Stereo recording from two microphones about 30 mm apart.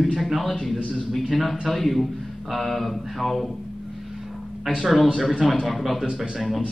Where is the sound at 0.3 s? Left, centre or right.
Centre.